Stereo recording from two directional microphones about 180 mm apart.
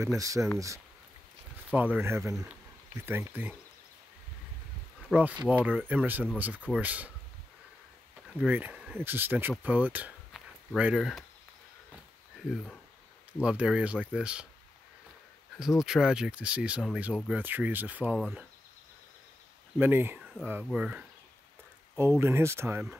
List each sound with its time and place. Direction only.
0.2 s speech: 20° right (ahead or behind)
1.7 s speech: 10° right (ahead or behind)
5.1 s speech: 10° right (ahead or behind)
8.4 s speech: 10° right (ahead or behind)
13.4 s speech: 5° right (ahead or behind)
15.8 s speech: 5° right (ahead or behind)
19.8 s speech: 10° right (ahead or behind)